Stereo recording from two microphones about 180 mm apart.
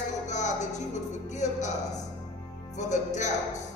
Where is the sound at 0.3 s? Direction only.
40° left (ahead or behind).